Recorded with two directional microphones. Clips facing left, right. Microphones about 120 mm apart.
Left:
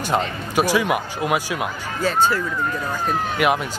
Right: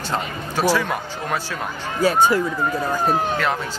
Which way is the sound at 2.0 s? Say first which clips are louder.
Right 3 dB; 15° right (ahead or behind).